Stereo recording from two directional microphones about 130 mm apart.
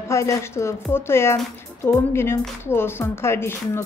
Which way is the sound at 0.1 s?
20° left (ahead or behind).